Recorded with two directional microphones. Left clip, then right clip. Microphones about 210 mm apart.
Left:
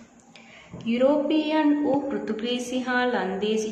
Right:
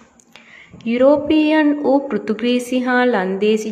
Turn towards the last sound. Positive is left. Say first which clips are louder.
# right 8 dB
turn(degrees=-30)  # may be behind; listen again after turning